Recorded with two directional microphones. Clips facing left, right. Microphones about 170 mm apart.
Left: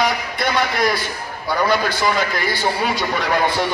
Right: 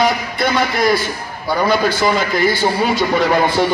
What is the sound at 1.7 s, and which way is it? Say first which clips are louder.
A man's voice: right 6 dB; 25° right (ahead or behind).